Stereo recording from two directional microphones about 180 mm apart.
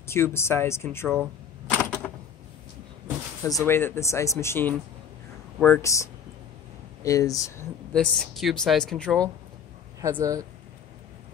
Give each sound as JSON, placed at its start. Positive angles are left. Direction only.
{"t": 0.0, "sound": "speech", "side_deg": 15}
{"t": 1.7, "sound": "a sound", "side_deg": 5}
{"t": 3.4, "sound": "speech", "side_deg": 15}
{"t": 7.9, "sound": "a woman's voice", "side_deg": 5}
{"t": 10.0, "sound": "speech", "side_deg": -20}